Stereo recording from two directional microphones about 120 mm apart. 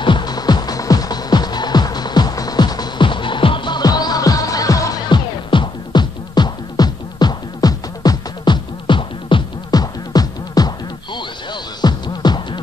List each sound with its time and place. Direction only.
0.0 s music: 40° left (ahead or behind)
5.5 s music: 40° left (ahead or behind)
11.8 s music: 35° left (ahead or behind)